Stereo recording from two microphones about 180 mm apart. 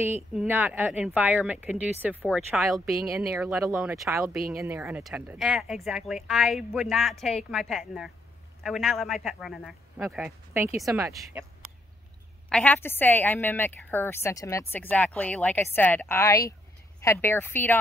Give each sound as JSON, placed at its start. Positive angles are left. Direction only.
{"t": 0.0, "sound": "speech", "side_deg": -10}
{"t": 12.4, "sound": "a woman's voice", "side_deg": 5}